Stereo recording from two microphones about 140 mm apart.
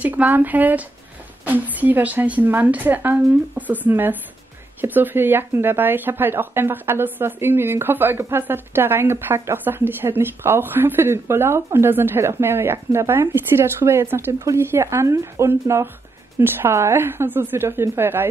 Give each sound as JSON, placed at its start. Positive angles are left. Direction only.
{"t": 0.0, "sound": "speech", "side_deg": -10}